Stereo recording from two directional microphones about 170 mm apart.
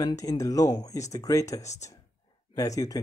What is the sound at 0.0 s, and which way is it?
Speech, 20° left (ahead or behind).